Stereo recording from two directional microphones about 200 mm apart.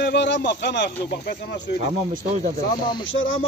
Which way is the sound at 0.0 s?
60° left (ahead or behind).